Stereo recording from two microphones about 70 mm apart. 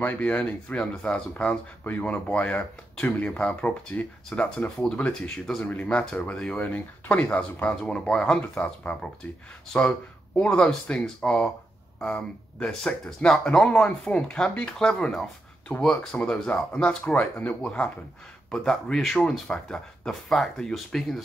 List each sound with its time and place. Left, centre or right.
0.2 s speech: centre
1.9 s speech: left
7.7 s speech: centre
9.8 s speech: centre